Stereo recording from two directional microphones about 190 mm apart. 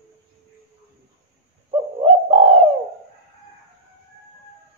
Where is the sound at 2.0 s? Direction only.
30° right (ahead or behind).